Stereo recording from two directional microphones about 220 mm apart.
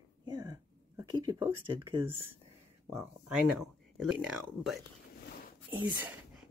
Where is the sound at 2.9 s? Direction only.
5° right (ahead or behind).